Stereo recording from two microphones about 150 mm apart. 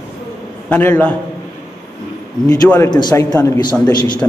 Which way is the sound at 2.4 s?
15° left (ahead or behind).